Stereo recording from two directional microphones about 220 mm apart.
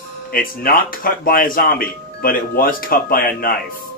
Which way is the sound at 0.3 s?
40° left (ahead or behind).